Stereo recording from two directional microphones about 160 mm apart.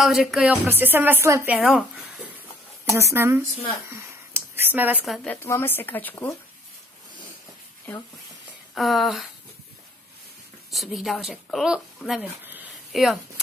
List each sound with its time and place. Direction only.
0.0 s speech: centre (ahead or behind)
0.7 s speech: 15° right (ahead or behind)
2.8 s speech: 15° right (ahead or behind)
3.9 s a sound: 15° right (ahead or behind)
5.0 s speech: centre (ahead or behind)
5.3 s speech: 15° left (ahead or behind)
8.7 s speech: centre (ahead or behind)
10.7 s speech: centre (ahead or behind)